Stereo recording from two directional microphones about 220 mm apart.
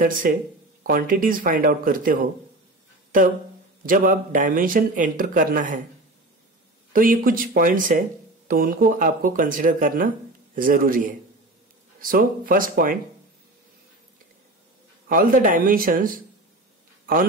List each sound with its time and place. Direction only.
0.8 s speech: 40° right (ahead or behind)
3.8 s speech: 40° right (ahead or behind)
6.9 s speech: 40° right (ahead or behind)
15.0 s speech: 40° right (ahead or behind)